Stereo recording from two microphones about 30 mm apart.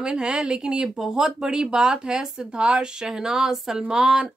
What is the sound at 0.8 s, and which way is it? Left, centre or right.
Speech, centre.